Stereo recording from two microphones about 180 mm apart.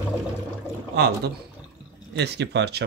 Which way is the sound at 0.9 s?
65° right (ahead or behind).